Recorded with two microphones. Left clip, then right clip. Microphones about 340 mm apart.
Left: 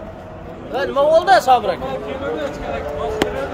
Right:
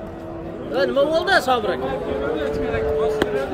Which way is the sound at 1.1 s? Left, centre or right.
Centre.